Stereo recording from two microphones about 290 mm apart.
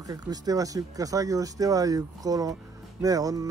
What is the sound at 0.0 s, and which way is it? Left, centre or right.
Speech, centre.